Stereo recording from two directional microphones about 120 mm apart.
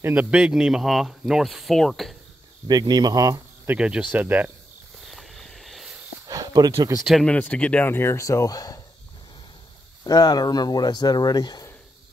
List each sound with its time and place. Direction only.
0.0 s speech: 15° right (ahead or behind)
2.7 s speech: 35° right (ahead or behind)
3.6 s speech: 10° right (ahead or behind)
5.0 s a sound: centre (ahead or behind)
6.2 s a sound: 30° right (ahead or behind)
7.2 s speech: 10° left (ahead or behind); by 8.8 s 30° left (ahead or behind)
10.0 s speech: 30° left (ahead or behind)